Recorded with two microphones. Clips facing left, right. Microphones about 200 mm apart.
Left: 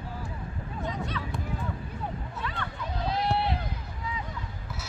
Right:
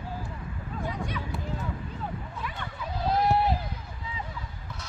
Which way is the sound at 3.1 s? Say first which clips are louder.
Right 4 dB; 45° right (ahead or behind).